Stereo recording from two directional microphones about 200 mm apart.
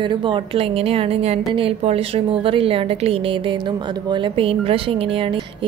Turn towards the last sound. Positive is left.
turn(degrees=-25)  # may be behind; listen again after turning